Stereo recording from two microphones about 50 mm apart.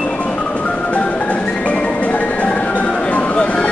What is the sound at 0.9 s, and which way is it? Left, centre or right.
Music, left.